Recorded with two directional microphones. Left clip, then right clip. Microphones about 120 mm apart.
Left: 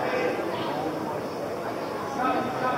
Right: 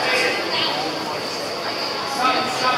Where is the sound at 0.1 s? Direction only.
15° right (ahead or behind).